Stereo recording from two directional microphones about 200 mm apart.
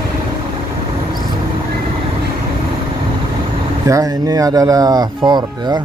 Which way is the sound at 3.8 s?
15° right (ahead or behind).